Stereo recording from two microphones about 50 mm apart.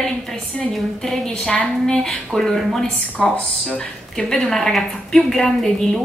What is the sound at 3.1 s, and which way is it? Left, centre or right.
Speech, left.